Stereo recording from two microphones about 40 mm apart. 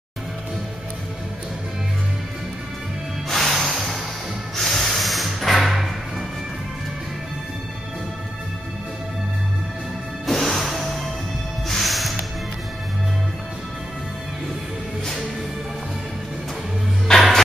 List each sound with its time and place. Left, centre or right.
3.3 s music: centre
4.6 s spray: centre
5.6 s music: centre
10.2 s music: centre
17.1 s music: centre